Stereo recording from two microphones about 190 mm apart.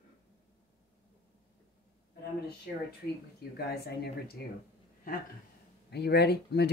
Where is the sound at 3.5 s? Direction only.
60° left (ahead or behind).